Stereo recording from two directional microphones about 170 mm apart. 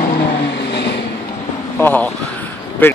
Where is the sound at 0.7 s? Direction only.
80° left.